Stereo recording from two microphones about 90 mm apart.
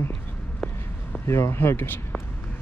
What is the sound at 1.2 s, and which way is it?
Speech, 30° left (ahead or behind).